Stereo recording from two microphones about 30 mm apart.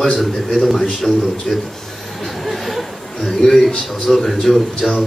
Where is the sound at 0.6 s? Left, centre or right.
Centre.